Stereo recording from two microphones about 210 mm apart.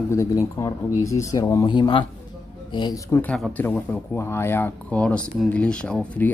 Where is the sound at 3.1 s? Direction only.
5° left (ahead or behind).